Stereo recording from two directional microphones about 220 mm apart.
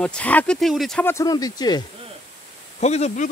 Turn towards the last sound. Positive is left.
turn(degrees=30)  # may be behind; listen again after turning